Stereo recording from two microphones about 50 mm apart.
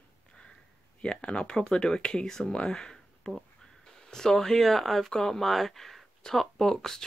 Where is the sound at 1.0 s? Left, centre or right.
Centre.